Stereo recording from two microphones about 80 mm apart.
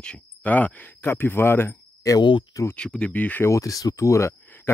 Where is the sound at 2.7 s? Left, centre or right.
Centre.